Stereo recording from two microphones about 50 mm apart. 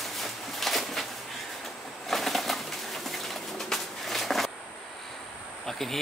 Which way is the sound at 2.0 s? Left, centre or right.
Centre.